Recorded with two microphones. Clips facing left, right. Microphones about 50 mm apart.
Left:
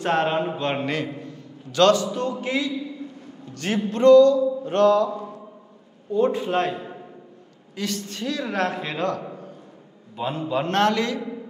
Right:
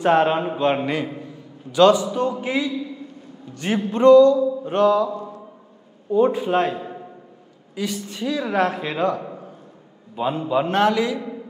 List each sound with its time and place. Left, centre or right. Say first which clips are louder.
0.0 s a man's voice: right 4 dB; centre